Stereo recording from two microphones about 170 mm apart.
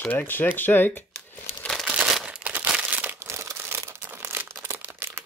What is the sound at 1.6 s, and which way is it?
Crumpling, centre (ahead or behind).